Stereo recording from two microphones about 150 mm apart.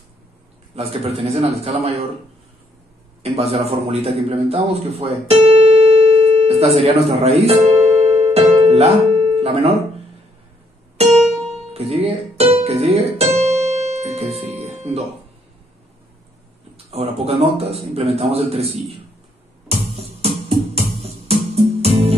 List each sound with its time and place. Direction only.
0.7 s a man's voice: 45° right (ahead or behind)
3.2 s a man's voice: 45° right (ahead or behind)
6.4 s music: 40° right (ahead or behind)
11.0 s music: 45° right (ahead or behind)
16.7 s a man's voice: 40° right (ahead or behind)
20.0 s music: 45° right (ahead or behind)
21.8 s music: 40° right (ahead or behind)